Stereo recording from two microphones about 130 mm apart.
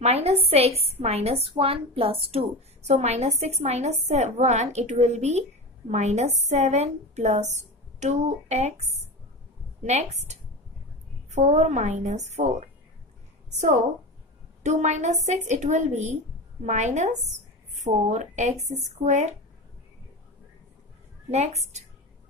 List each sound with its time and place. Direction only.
0.0 s a woman's voice: 50° right (ahead or behind)
21.3 s a woman's voice: 55° right (ahead or behind)